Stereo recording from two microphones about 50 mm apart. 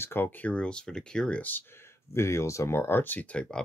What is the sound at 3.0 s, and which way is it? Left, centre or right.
Speech, left.